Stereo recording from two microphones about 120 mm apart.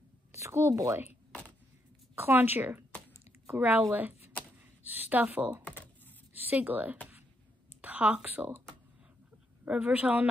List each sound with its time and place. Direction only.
0.3 s speech: 20° right (ahead or behind)
2.1 s speech: 15° right (ahead or behind)
5.6 s computer keyboard: 10° left (ahead or behind)
6.3 s a woman's voice: 15° right (ahead or behind)
9.7 s speech: 10° right (ahead or behind)